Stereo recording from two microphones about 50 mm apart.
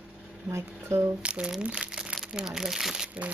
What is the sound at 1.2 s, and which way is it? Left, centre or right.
Speech, right.